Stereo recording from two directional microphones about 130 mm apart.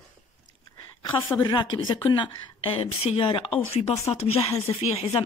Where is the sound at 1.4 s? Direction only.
35° left (ahead or behind).